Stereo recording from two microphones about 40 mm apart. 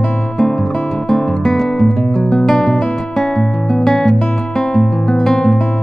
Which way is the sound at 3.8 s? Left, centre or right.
Centre.